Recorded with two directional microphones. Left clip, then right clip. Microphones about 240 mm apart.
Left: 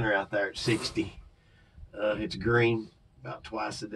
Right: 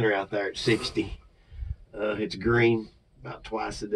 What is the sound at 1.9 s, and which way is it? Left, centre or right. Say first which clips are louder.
Speech: right 1 dB; left.